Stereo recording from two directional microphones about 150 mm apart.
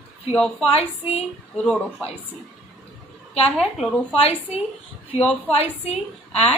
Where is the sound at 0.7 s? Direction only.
45° left (ahead or behind).